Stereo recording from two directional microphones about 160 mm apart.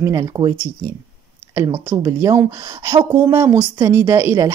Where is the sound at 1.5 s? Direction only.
15° right (ahead or behind).